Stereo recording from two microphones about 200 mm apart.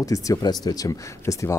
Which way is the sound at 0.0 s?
15° left (ahead or behind).